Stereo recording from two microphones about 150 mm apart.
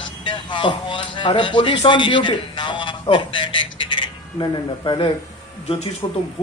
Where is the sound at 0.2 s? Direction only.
30° left (ahead or behind).